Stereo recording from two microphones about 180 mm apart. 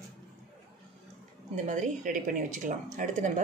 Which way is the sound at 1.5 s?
45° right (ahead or behind).